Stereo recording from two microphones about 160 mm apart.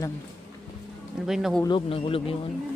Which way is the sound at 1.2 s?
Centre (ahead or behind).